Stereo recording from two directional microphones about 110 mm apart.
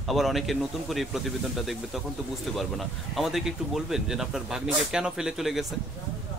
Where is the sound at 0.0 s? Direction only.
Centre (ahead or behind).